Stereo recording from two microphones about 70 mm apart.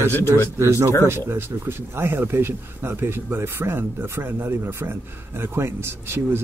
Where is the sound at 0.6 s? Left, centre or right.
Right.